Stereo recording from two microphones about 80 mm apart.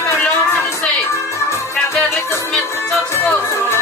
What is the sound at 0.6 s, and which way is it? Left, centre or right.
Music, left.